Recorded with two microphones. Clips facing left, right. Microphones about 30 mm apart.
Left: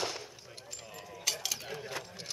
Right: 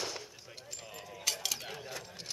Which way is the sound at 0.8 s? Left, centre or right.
Centre.